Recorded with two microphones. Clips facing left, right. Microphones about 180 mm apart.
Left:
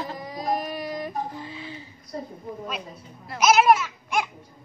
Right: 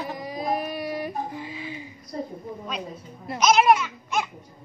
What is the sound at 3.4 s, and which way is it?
Speech, 5° left (ahead or behind).